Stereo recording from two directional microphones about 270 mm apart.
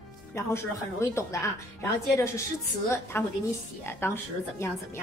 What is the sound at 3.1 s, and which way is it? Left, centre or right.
Speech, centre.